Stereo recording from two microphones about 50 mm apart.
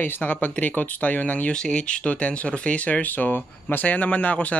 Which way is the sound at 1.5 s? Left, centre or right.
Centre.